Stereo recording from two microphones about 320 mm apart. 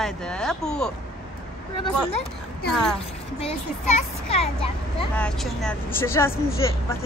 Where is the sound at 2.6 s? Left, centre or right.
Centre.